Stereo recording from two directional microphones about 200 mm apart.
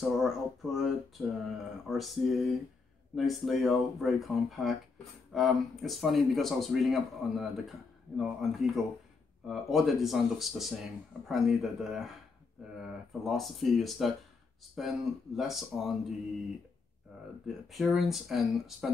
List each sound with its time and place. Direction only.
0.0 s speech: centre (ahead or behind)
17.6 s speech: centre (ahead or behind)